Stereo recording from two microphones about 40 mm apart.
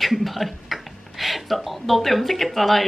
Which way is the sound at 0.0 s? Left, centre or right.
Centre.